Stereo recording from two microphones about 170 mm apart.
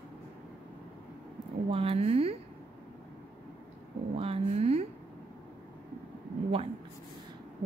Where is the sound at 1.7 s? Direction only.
35° right (ahead or behind).